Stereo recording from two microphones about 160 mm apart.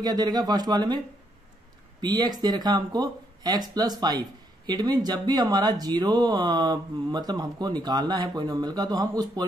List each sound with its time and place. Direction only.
0.0 s speech: 25° right (ahead or behind)